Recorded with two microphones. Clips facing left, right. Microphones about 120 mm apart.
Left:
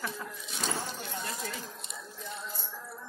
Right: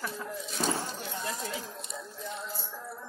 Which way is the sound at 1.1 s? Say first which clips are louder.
Right 3 dB; centre (ahead or behind).